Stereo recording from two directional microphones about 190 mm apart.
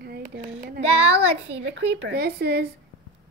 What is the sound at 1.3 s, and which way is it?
Speech, 70° right (ahead or behind).